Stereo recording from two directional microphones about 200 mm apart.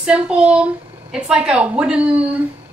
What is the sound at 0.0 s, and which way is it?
A woman's voice, 5° right (ahead or behind).